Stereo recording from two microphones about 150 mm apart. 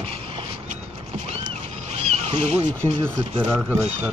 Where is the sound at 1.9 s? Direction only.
50° right (ahead or behind).